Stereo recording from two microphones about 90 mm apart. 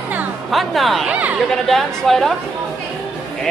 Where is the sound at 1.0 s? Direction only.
15° right (ahead or behind).